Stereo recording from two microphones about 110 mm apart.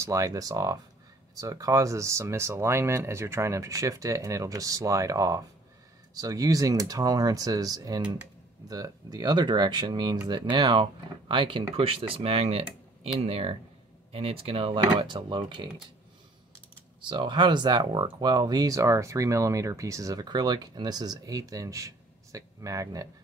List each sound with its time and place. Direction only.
0.0 s speech: 30° right (ahead or behind); by 15.7 s 45° right (ahead or behind)
17.0 s speech: 45° right (ahead or behind)